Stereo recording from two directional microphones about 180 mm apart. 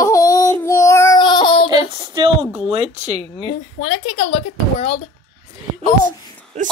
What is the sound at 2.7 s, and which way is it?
Speech, 35° right (ahead or behind).